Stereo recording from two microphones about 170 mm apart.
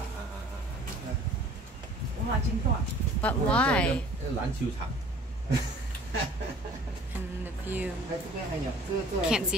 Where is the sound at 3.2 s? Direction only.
5° left (ahead or behind).